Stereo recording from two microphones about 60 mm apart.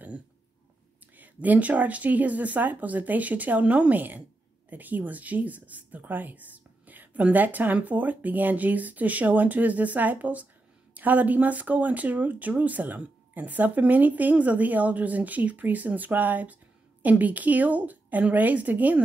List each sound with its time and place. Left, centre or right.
1.1 s speech: right